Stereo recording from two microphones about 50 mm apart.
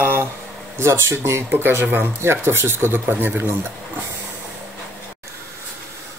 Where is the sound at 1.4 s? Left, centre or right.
Right.